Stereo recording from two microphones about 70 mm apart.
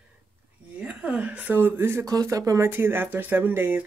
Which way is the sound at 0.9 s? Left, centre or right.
Centre.